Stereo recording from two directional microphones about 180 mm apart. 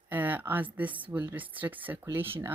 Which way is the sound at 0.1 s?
10° right (ahead or behind).